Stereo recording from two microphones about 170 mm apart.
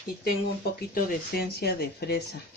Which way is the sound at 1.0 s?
65° left (ahead or behind).